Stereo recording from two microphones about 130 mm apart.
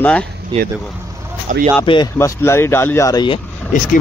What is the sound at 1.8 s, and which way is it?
Speech, 40° left (ahead or behind).